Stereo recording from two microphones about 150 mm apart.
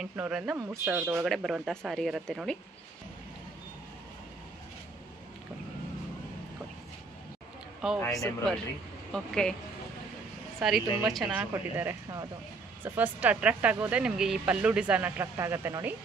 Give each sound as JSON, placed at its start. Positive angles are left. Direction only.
{"t": 0.1, "sound": "speech", "side_deg": -10}
{"t": 1.2, "sound": "speech", "side_deg": 0}
{"t": 8.1, "sound": "speech", "side_deg": 0}
{"t": 10.6, "sound": "speech", "side_deg": 0}
{"t": 11.3, "sound": "speech", "side_deg": -15}